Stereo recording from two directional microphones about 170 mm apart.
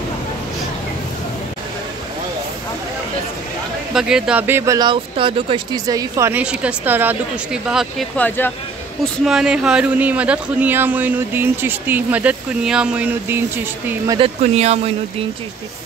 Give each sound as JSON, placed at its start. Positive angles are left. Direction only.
{"t": 3.9, "sound": "speech", "side_deg": -5}
{"t": 8.2, "sound": "speech", "side_deg": 10}
{"t": 9.0, "sound": "speech", "side_deg": 0}
{"t": 13.8, "sound": "speech", "side_deg": -20}
{"t": 14.2, "sound": "speech", "side_deg": -40}